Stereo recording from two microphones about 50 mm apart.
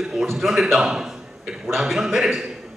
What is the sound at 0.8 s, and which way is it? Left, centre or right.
A man's voice, centre.